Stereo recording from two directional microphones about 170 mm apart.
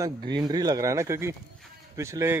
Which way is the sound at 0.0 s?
25° right (ahead or behind).